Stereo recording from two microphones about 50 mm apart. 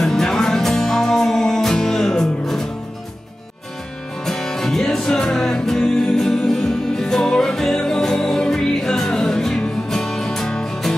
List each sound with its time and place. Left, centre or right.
0.0 s music: centre
4.3 s music: centre